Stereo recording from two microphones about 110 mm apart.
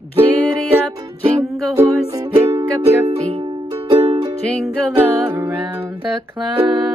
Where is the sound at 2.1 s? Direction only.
30° right (ahead or behind).